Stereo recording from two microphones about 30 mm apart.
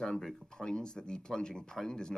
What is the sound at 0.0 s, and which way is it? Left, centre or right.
Speech, centre.